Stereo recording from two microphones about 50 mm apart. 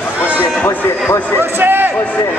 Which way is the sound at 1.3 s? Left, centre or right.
Right.